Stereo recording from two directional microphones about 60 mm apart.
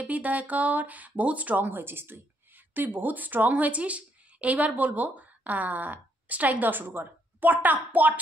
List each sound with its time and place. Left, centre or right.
0.0 s speech: right